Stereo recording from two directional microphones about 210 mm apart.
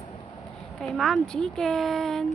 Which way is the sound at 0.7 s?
Centre (ahead or behind).